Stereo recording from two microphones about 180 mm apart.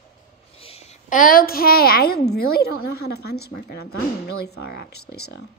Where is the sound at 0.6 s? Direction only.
35° left (ahead or behind).